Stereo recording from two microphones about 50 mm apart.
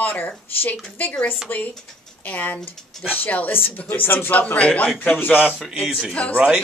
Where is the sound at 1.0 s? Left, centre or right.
Left.